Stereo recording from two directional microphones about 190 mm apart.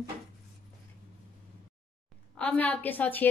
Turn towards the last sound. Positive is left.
turn(degrees=10)  # may be behind; listen again after turning